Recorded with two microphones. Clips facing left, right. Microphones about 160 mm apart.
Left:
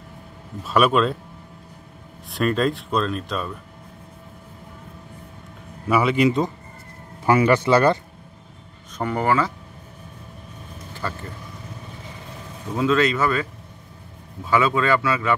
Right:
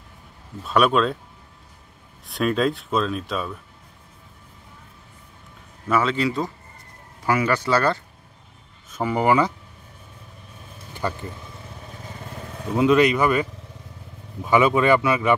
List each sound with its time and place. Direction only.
0.7 s speech: centre (ahead or behind)
2.3 s speech: centre (ahead or behind)
5.9 s speech: 10° left (ahead or behind)
8.9 s speech: 10° right (ahead or behind)
11.0 s speech: 15° right (ahead or behind)
12.7 s speech: 15° right (ahead or behind)